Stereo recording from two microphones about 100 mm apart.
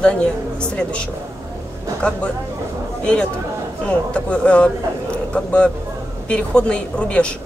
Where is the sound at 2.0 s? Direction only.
10° left (ahead or behind).